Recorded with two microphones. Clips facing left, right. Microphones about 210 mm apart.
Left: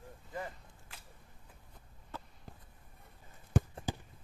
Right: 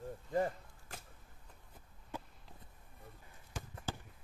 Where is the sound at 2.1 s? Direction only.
15° right (ahead or behind).